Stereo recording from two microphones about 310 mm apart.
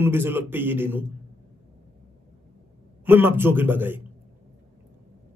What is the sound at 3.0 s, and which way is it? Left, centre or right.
A man's voice, centre.